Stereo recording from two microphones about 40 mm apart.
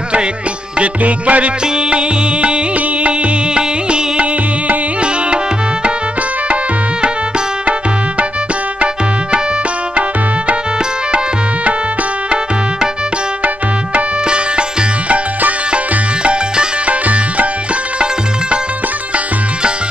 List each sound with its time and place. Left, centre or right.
0.7 s music: right
14.2 s music: right